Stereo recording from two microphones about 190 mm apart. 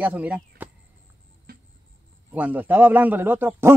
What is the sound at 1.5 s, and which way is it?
Music, 50° right (ahead or behind).